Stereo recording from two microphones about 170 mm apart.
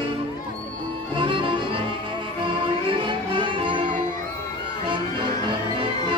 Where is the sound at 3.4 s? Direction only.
30° right (ahead or behind).